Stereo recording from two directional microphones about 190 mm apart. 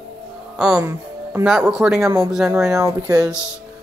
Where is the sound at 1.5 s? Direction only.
Centre (ahead or behind).